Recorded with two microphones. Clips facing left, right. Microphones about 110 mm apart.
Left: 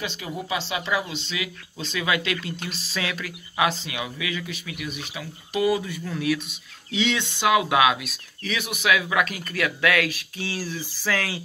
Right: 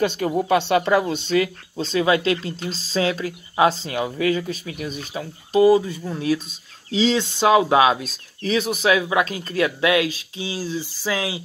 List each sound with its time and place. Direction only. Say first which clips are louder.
0.0 s speech: right 11 dB; 50° right (ahead or behind); by 11.4 s 15° right (ahead or behind)